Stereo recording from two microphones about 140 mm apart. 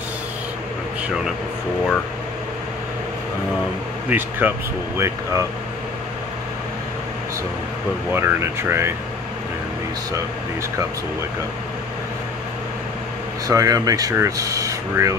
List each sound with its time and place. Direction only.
1.0 s speech: 5° right (ahead or behind)
4.1 s speech: 15° right (ahead or behind)
8.1 s speech: 15° right (ahead or behind)
13.5 s speech: 25° right (ahead or behind)